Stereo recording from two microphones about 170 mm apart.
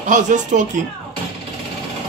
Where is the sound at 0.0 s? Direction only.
45° right (ahead or behind).